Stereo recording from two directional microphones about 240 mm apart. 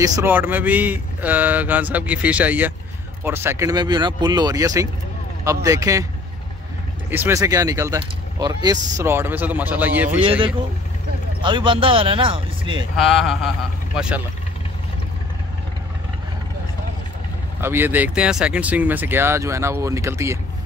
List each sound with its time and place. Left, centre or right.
0.0 s speech: centre
7.1 s speech: centre
11.4 s speech: centre
13.0 s speech: centre
17.6 s speech: centre